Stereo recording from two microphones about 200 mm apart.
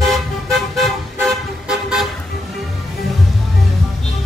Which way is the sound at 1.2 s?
Centre (ahead or behind).